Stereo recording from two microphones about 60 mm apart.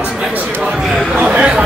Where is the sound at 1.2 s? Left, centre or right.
Centre.